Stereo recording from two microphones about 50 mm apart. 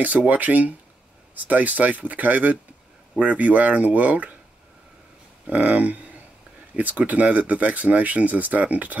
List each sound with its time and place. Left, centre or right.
0.0 s speech: right
5.5 s speech: right